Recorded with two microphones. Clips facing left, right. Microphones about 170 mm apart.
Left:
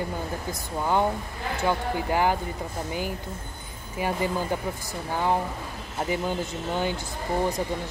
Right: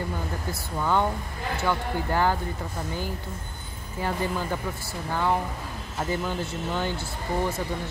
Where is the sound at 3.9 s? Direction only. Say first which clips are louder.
Left 2 dB; 15° left (ahead or behind).